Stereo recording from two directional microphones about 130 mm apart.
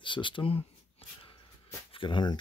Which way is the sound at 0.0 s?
40° left (ahead or behind).